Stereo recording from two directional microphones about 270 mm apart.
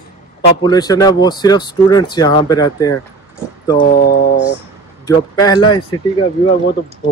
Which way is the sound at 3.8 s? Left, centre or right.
Left.